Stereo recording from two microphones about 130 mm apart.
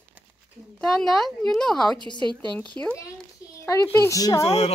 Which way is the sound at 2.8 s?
15° left (ahead or behind).